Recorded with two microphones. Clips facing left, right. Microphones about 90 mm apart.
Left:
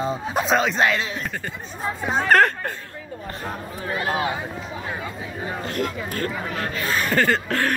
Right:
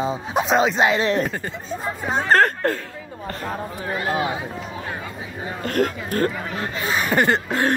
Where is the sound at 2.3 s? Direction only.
30° right (ahead or behind).